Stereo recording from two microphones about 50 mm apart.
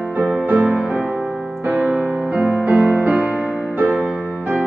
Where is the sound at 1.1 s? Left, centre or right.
Right.